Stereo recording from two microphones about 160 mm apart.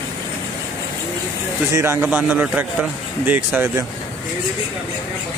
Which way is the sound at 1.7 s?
15° right (ahead or behind).